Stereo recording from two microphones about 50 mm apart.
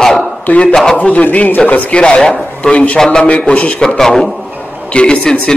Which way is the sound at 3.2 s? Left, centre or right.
Left.